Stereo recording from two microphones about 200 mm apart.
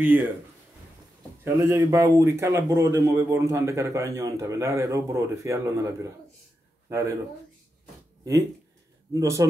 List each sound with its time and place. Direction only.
0.0 s speech: 10° right (ahead or behind)
1.4 s speech: 15° right (ahead or behind)
6.9 s speech: 15° right (ahead or behind)
9.1 s speech: 15° right (ahead or behind)